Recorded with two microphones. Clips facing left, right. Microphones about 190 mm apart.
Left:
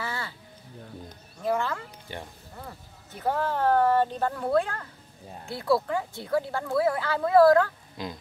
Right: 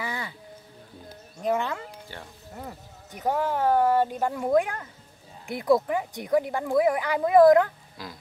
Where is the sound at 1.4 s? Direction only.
20° right (ahead or behind).